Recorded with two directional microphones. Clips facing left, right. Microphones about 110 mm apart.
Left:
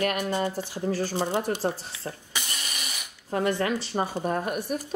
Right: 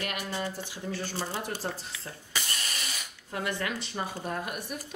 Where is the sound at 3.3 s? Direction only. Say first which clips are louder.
Left 7 dB; 35° left (ahead or behind).